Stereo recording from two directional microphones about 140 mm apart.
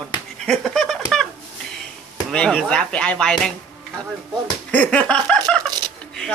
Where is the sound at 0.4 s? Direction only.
5° left (ahead or behind).